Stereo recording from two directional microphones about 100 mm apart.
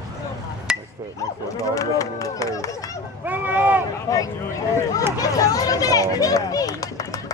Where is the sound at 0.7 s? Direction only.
5° right (ahead or behind).